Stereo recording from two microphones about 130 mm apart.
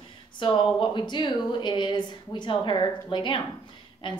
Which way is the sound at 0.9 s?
35° left (ahead or behind).